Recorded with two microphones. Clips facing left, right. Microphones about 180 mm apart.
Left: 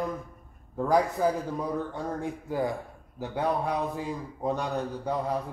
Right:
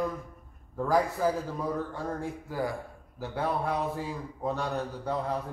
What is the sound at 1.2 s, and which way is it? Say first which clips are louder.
A man's voice: left 2 dB; 15° left (ahead or behind).